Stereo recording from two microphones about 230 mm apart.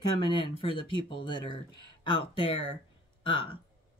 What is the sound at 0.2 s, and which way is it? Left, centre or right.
Speech, left.